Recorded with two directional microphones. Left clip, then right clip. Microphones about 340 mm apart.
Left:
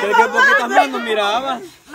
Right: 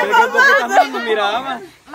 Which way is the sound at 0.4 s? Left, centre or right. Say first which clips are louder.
Right 1 dB; right.